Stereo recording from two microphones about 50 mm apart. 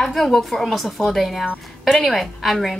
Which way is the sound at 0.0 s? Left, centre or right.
Centre.